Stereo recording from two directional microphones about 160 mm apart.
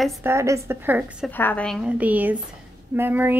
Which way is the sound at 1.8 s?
10° right (ahead or behind).